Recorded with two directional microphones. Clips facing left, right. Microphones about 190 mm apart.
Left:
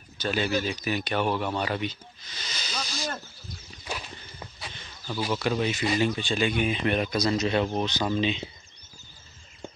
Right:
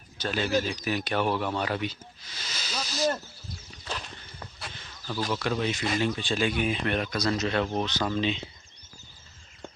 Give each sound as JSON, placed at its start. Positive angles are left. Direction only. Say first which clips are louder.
{"t": 0.2, "sound": "speech", "louder": "even", "side_deg": 0}
{"t": 3.8, "sound": "horse", "louder": "left 1 dB", "side_deg": 10}
{"t": 4.6, "sound": "a sound", "louder": "even", "side_deg": 0}
{"t": 5.1, "sound": "speech", "louder": "left 2 dB", "side_deg": 5}
{"t": 6.9, "sound": "speech", "louder": "left 2 dB", "side_deg": 15}